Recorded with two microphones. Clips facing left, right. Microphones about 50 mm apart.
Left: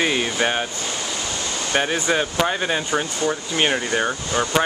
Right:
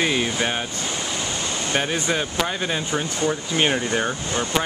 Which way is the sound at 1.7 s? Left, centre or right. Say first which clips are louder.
Left 3 dB; centre.